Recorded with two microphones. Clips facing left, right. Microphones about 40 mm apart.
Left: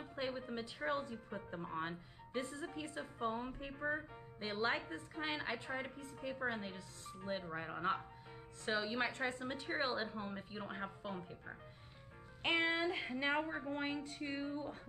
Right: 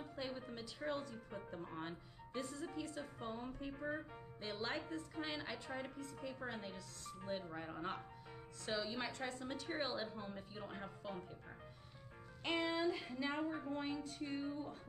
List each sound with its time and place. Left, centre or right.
0.0 s a woman's voice: left
12.4 s speech: left